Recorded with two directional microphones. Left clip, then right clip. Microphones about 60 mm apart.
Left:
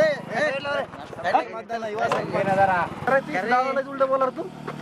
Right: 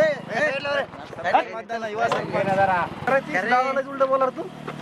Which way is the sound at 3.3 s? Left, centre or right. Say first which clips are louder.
Right 1 dB; centre.